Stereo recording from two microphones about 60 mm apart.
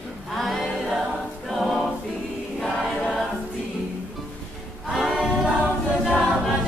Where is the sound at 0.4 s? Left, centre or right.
Centre.